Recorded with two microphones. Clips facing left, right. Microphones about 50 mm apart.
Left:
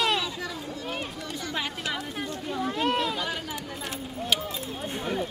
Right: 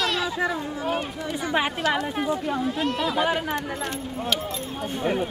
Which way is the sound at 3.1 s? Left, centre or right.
Right.